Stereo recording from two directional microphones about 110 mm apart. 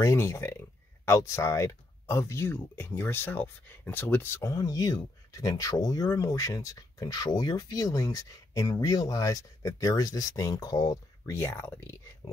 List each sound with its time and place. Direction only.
0.0 s speech: 25° left (ahead or behind)
4.4 s speech: 30° left (ahead or behind)